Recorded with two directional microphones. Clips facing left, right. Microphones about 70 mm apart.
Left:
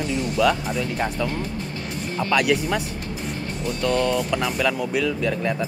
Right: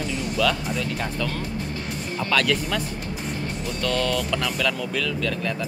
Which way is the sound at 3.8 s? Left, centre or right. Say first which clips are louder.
Left 3 dB; left.